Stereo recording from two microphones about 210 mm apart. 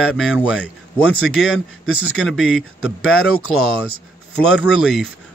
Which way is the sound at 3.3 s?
90° left.